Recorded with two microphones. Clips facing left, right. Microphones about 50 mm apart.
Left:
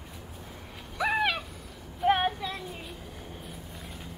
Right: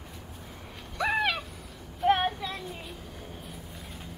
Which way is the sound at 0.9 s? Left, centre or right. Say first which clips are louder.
Even; centre.